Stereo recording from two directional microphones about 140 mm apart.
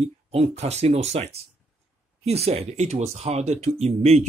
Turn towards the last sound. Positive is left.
turn(degrees=-50)  # may be behind; listen again after turning